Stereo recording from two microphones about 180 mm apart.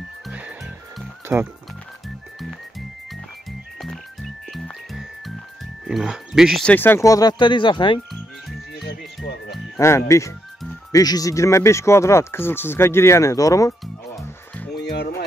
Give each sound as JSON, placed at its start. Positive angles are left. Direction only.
{"t": 0.3, "sound": "music", "side_deg": -5}
{"t": 3.8, "sound": "music", "side_deg": 0}
{"t": 5.9, "sound": "speech", "side_deg": -5}
{"t": 8.1, "sound": "music", "side_deg": 0}
{"t": 9.8, "sound": "speech", "side_deg": 15}
{"t": 14.8, "sound": "music", "side_deg": 65}